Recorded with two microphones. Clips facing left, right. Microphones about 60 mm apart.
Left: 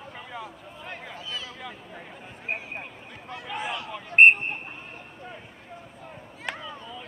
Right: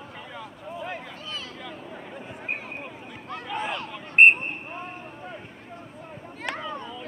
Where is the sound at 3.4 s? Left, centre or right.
Centre.